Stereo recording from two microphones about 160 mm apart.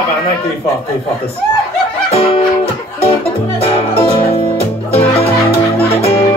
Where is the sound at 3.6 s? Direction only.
35° left (ahead or behind).